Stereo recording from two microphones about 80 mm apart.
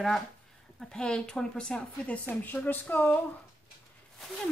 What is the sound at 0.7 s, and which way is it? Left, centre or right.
Speech, centre.